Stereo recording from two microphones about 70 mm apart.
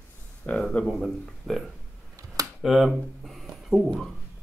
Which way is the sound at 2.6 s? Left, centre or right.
Centre.